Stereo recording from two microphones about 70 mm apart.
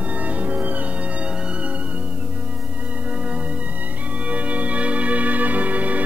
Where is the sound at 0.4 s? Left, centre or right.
Right.